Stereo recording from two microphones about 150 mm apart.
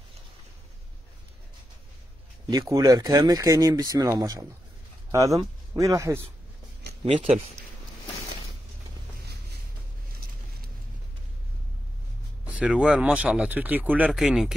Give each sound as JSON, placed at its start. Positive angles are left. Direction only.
{"t": 2.5, "sound": "speech", "side_deg": -25}
{"t": 7.1, "sound": "speech", "side_deg": -45}
{"t": 12.5, "sound": "speech", "side_deg": -5}